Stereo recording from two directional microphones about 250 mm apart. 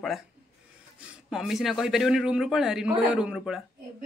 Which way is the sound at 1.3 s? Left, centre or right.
Centre.